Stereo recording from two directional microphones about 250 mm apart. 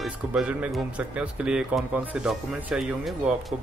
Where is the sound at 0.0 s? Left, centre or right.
Centre.